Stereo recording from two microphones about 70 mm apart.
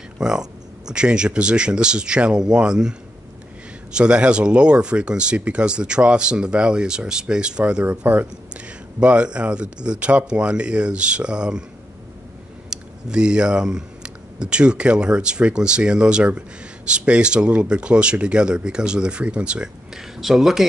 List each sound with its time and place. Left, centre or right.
0.2 s speech: centre
7.8 s speech: right
12.6 s speech: centre